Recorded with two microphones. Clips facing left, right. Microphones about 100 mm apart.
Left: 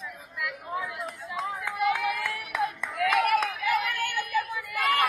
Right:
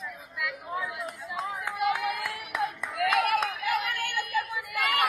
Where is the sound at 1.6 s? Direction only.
Centre (ahead or behind).